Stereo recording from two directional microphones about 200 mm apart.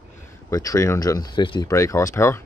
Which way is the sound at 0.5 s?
15° left (ahead or behind).